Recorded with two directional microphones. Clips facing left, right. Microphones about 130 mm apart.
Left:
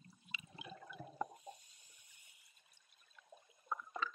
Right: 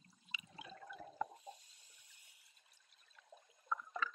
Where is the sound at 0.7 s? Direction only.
5° left (ahead or behind).